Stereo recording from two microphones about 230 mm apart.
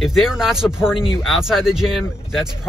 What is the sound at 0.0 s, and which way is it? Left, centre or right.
Speech, centre.